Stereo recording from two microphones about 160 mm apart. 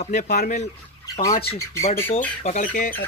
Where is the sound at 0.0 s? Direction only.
50° left (ahead or behind).